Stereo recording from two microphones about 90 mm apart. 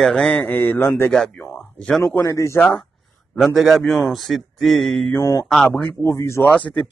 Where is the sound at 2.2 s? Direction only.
30° left (ahead or behind).